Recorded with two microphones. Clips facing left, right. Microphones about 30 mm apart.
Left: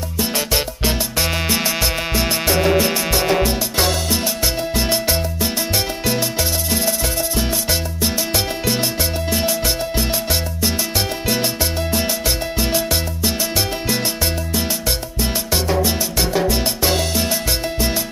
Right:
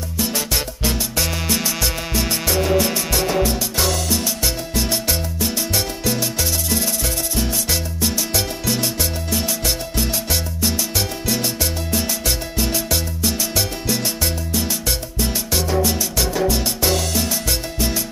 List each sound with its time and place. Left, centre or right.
0.2 s music: left
7.7 s music: centre
15.5 s salsa music: centre